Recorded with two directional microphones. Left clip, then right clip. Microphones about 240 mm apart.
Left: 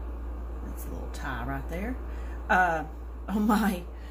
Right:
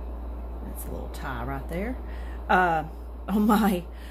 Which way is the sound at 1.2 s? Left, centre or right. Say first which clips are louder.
Even; right.